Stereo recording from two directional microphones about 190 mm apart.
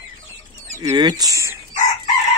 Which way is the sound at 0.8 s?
20° right (ahead or behind).